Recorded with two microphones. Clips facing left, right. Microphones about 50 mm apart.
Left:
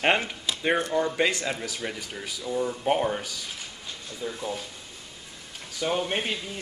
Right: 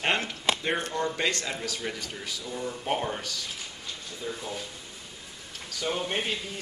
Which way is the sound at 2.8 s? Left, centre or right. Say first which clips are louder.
Left 3 dB; centre.